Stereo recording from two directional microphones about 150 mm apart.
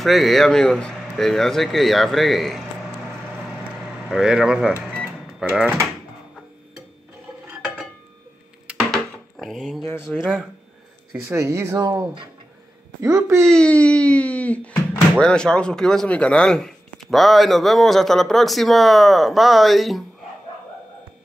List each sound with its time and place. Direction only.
0.0 s speech: centre (ahead or behind)
4.1 s speech: 5° right (ahead or behind)
7.4 s dishes: 10° right (ahead or behind)
8.6 s a sound: centre (ahead or behind)
10.0 s speech: 5° right (ahead or behind)
11.2 s speech: 15° right (ahead or behind)
13.5 s speech: 5° left (ahead or behind)